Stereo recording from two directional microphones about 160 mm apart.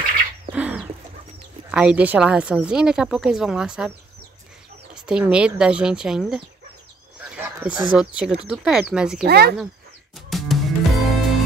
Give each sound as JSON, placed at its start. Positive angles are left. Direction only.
{"t": 0.5, "sound": "bird", "side_deg": -5}
{"t": 1.7, "sound": "a woman's voice", "side_deg": -5}
{"t": 4.9, "sound": "a woman's voice", "side_deg": -5}
{"t": 7.2, "sound": "a sound", "side_deg": -10}
{"t": 8.2, "sound": "a woman's voice", "side_deg": -5}
{"t": 9.2, "sound": "speech", "side_deg": -80}
{"t": 10.1, "sound": "music", "side_deg": 0}